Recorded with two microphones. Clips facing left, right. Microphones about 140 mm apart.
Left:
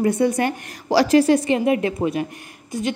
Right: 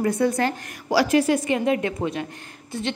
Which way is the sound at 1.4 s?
20° left (ahead or behind).